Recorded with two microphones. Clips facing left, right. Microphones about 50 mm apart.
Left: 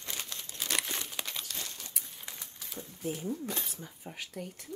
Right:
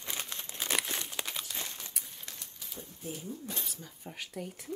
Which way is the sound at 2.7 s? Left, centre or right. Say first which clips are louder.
Left 5 dB; left.